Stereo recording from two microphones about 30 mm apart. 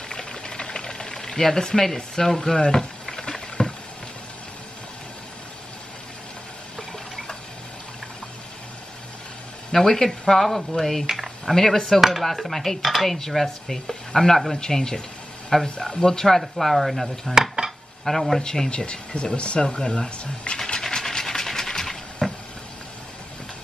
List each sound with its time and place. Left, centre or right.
0.1 s a sound: left
9.7 s speech: centre
12.0 s chopping: centre
13.0 s speech: centre
17.3 s dishes: centre
18.0 s speech: centre
18.9 s speech: left
20.8 s a sound: centre